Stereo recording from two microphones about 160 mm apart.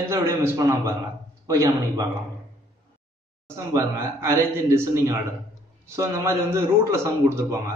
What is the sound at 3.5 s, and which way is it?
A man's voice, 20° right (ahead or behind).